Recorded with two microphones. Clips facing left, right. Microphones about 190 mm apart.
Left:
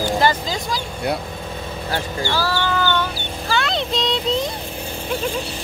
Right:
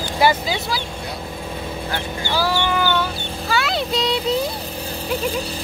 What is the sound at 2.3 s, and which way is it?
Speech, 15° right (ahead or behind).